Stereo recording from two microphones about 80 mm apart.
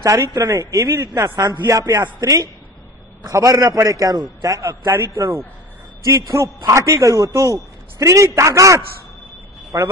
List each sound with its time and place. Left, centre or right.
0.3 s a woman's voice: right